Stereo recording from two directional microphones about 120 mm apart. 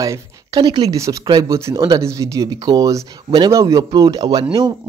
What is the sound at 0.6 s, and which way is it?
A man's voice, 40° right (ahead or behind).